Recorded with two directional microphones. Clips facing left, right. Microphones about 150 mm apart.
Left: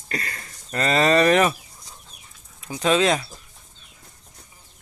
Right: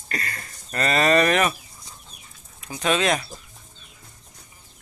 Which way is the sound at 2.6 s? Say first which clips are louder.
Left 3 dB; 25° left (ahead or behind).